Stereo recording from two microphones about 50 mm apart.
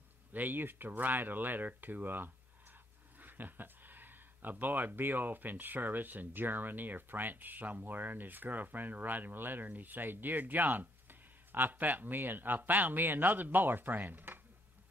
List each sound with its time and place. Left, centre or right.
0.3 s speech: right